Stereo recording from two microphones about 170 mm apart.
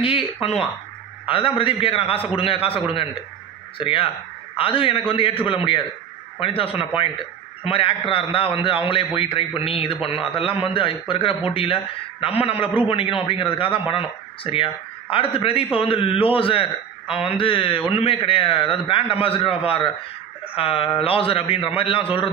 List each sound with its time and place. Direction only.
0.0 s a man's voice: 35° left (ahead or behind)